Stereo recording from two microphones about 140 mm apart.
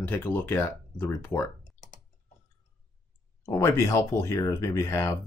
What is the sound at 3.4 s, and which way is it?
Speech, 20° left (ahead or behind).